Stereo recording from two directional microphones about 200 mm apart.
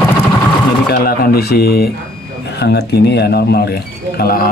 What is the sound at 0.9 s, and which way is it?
Speech, 50° left (ahead or behind).